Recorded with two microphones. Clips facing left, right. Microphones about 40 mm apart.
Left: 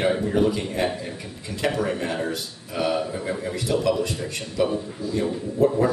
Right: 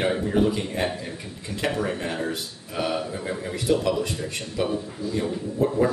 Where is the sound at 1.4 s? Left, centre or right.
Centre.